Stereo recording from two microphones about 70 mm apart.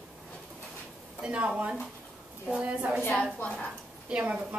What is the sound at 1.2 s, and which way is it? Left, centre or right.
A woman's voice, centre.